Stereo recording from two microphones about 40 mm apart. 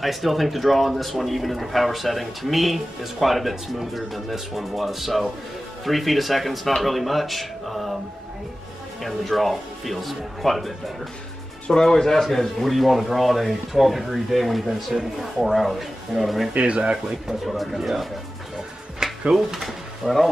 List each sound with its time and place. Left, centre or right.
0.0 s speech: centre
9.0 s speech: centre
11.6 s speech: centre
16.5 s speech: right
17.1 s speech: centre
19.0 s a sound: centre
19.3 s speech: centre